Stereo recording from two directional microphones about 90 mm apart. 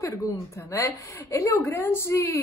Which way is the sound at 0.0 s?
35° left (ahead or behind).